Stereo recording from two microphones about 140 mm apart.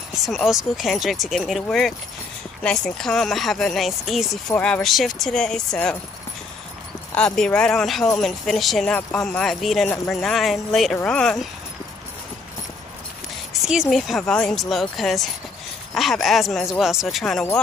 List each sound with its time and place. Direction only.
0.1 s speech: centre (ahead or behind)
7.2 s speech: 5° left (ahead or behind)
13.5 s speech: centre (ahead or behind)